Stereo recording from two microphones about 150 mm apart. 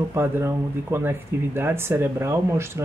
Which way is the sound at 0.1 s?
15° right (ahead or behind).